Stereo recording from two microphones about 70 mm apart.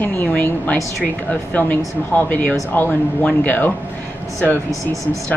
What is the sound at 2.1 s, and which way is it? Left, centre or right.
Speech, left.